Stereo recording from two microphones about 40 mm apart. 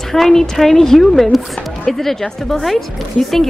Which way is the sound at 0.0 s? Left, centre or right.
Centre.